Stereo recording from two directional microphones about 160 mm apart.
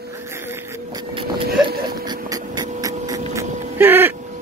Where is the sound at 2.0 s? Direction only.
25° right (ahead or behind).